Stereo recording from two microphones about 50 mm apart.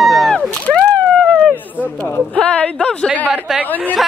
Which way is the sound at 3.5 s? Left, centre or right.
Centre.